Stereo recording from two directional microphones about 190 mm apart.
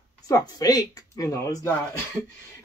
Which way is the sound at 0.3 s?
20° left (ahead or behind).